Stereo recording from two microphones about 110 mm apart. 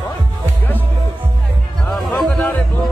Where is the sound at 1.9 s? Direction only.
10° left (ahead or behind).